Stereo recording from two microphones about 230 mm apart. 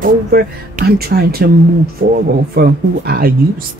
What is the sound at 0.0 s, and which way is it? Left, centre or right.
Speech, right.